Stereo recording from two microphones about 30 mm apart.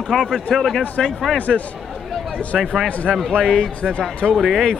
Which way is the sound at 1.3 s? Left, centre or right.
Left.